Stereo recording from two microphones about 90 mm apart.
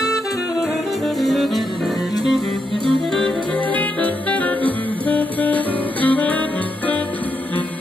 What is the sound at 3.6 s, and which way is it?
Music, 15° left (ahead or behind).